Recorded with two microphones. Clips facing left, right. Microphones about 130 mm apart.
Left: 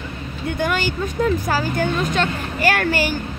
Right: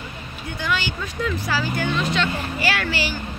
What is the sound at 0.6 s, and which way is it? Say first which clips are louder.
Speech: left 4 dB; 45° left (ahead or behind).